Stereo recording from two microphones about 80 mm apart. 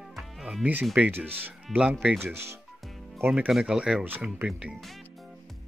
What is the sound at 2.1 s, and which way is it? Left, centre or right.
Speech, right.